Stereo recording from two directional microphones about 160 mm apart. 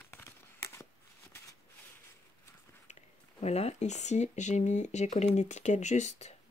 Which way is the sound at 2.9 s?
40° left (ahead or behind).